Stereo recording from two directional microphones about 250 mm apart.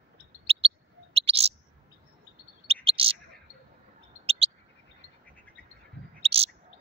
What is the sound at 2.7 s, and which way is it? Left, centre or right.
Bird, right.